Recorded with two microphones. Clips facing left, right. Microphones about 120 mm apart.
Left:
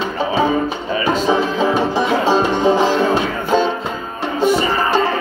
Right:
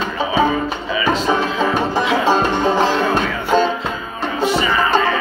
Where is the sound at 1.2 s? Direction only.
15° left (ahead or behind).